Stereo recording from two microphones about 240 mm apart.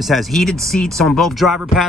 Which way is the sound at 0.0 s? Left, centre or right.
Centre.